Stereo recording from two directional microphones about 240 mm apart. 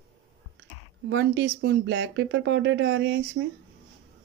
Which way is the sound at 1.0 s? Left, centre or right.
Right.